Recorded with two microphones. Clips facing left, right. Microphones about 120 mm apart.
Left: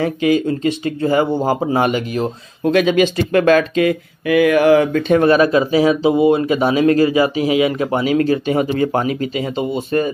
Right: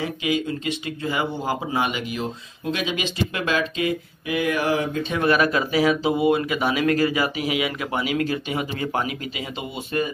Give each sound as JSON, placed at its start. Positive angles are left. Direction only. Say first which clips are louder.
{"t": 0.0, "sound": "speech", "louder": "left 9 dB", "side_deg": 45}
{"t": 5.1, "sound": "speech", "louder": "left 8 dB", "side_deg": 35}